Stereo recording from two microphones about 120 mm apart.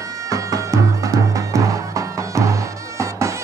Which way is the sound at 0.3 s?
25° right (ahead or behind).